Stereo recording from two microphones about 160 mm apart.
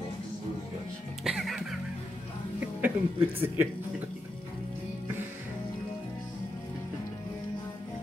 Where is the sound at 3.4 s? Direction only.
15° right (ahead or behind).